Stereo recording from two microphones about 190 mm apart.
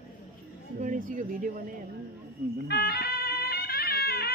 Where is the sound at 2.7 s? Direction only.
55° left (ahead or behind).